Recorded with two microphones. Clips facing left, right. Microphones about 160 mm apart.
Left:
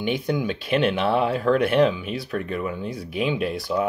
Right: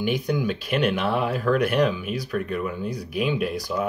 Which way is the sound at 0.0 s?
25° left (ahead or behind).